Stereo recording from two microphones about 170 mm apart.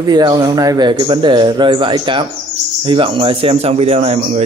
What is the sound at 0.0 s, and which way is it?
Speech, 25° right (ahead or behind).